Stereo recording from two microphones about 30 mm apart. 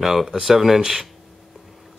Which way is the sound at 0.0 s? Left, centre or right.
Centre.